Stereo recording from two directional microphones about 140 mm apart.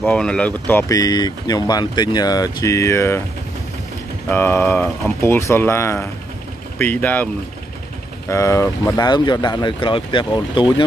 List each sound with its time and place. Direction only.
0.0 s speech: 10° left (ahead or behind)
0.9 s speech: 25° left (ahead or behind)
4.3 s speech: 15° left (ahead or behind)
8.3 s speech: 20° left (ahead or behind)